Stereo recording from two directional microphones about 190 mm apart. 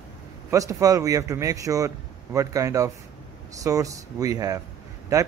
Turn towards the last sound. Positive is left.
turn(degrees=-15)  # may be behind; listen again after turning